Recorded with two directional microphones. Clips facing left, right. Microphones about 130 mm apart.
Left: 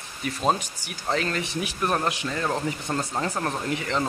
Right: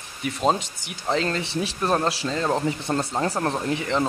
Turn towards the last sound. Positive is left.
turn(degrees=-20)  # may be behind; listen again after turning